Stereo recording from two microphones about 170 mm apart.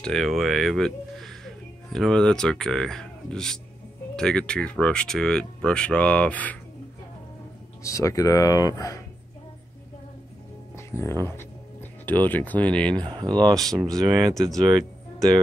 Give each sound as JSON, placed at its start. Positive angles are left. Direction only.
{"t": 0.0, "sound": "speech", "side_deg": 0}
{"t": 7.8, "sound": "speech", "side_deg": 20}
{"t": 10.9, "sound": "speech", "side_deg": 15}
{"t": 12.9, "sound": "speech", "side_deg": -25}
{"t": 13.7, "sound": "speech", "side_deg": 0}